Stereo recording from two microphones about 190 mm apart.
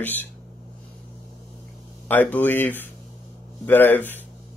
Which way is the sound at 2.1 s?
10° left (ahead or behind).